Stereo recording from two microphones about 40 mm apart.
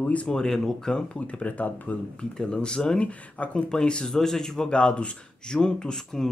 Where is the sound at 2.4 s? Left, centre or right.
Left.